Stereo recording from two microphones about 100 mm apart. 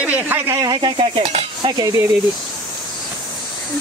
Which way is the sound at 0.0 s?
15° right (ahead or behind).